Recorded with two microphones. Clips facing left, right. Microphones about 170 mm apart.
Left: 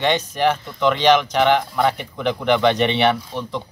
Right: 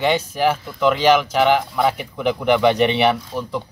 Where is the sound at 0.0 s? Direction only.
5° right (ahead or behind).